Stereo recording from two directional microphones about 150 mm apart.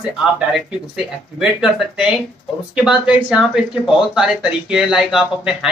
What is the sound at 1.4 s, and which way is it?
Speech, 5° right (ahead or behind).